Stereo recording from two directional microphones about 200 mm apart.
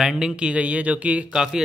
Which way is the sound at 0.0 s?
5° right (ahead or behind).